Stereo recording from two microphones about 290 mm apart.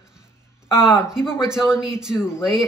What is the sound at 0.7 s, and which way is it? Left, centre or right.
Speech, centre.